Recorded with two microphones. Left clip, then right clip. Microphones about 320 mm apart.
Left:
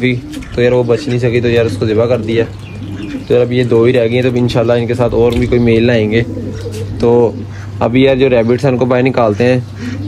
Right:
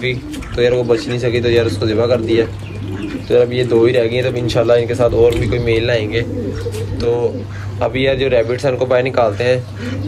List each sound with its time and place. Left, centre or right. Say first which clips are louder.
0.0 s a man's voice: left 4 dB; centre
7.8 s a man's voice: left 5 dB; centre